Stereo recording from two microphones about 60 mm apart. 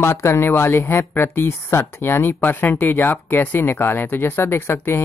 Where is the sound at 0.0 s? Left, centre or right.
Left.